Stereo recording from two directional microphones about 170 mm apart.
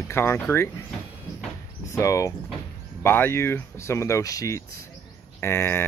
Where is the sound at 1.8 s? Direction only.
15° left (ahead or behind).